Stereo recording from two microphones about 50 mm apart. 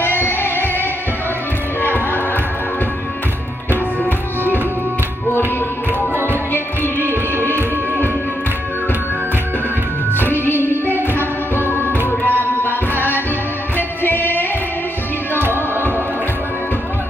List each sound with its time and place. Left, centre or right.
0.0 s music: left
6.2 s music: left
10.1 s music: left
12.2 s tabla: left
13.7 s music: left
15.3 s music: right